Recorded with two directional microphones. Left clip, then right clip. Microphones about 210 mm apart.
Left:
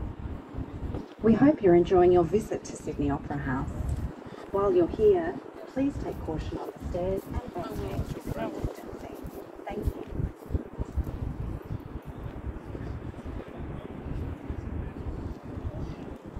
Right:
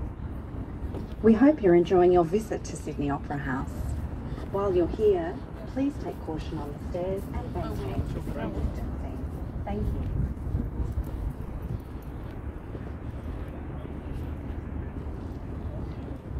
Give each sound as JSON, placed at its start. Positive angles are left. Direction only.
{"t": 1.2, "sound": "speech", "side_deg": -50}
{"t": 4.6, "sound": "speech", "side_deg": -25}